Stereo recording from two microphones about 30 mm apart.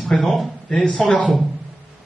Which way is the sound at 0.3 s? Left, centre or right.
Centre.